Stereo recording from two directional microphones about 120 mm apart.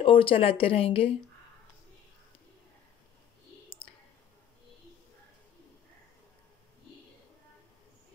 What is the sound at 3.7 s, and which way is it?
Clicking, 50° left (ahead or behind).